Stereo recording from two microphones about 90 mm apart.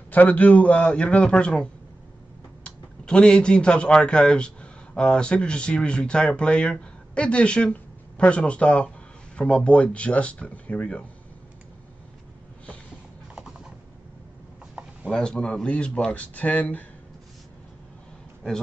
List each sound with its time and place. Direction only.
0.1 s a man's voice: 15° left (ahead or behind)
13.3 s clip-clop: 5° right (ahead or behind)
15.0 s speech: 10° left (ahead or behind)